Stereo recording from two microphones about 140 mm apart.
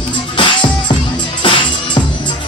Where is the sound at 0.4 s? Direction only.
35° left (ahead or behind).